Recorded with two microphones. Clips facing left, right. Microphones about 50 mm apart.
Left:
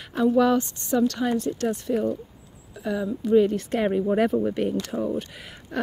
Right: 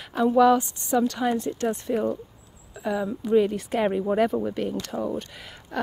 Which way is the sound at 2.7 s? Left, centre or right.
Centre.